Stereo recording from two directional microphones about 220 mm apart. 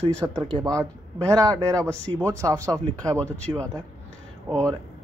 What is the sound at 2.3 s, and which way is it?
Speech, 15° right (ahead or behind).